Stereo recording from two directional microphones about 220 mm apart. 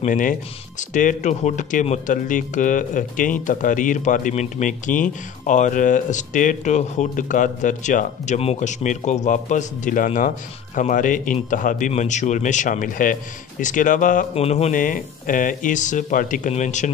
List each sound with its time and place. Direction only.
0.0 s speech: 35° left (ahead or behind)